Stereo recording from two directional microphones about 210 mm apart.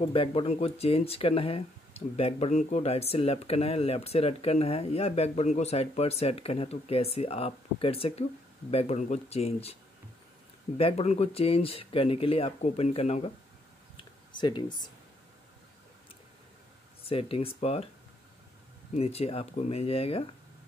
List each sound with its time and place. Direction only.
0.0 s speech: 25° left (ahead or behind)
10.8 s speech: 30° left (ahead or behind)
14.3 s speech: 20° left (ahead or behind)
17.0 s speech: 25° left (ahead or behind)
18.9 s speech: 30° left (ahead or behind)